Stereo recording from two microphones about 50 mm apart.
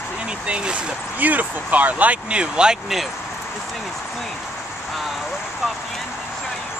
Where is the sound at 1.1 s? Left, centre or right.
Right.